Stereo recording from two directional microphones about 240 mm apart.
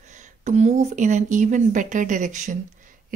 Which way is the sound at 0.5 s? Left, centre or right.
Right.